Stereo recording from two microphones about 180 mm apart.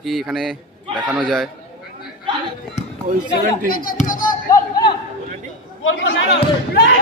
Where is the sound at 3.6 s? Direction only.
55° left (ahead or behind).